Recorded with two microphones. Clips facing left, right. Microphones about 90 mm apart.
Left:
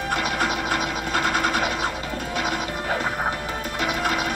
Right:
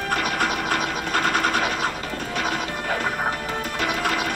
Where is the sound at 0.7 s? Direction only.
45° right (ahead or behind).